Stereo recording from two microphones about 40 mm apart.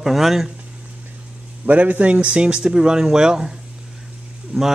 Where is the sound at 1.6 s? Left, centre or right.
Right.